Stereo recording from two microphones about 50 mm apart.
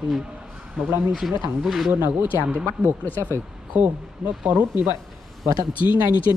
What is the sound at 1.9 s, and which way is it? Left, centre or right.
Speech, right.